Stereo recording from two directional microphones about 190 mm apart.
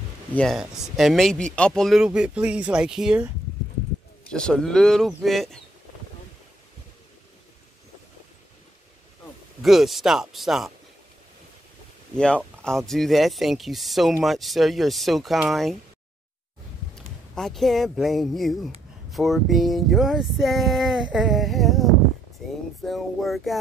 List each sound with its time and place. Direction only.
0.3 s speech: 5° left (ahead or behind)
4.3 s speech: 5° left (ahead or behind)
9.6 s speech: centre (ahead or behind)
12.6 s speech: centre (ahead or behind)
17.4 s speech: centre (ahead or behind)